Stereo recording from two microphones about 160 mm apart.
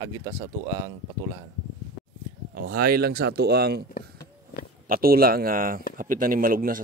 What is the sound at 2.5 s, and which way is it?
Speech, 65° right (ahead or behind).